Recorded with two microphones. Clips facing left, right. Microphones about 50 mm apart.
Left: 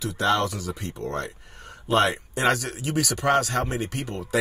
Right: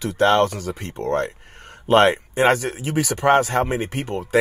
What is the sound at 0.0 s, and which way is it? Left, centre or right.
Speech, right.